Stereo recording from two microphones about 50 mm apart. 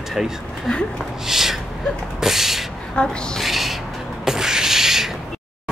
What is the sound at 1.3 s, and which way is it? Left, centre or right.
Gasp, centre.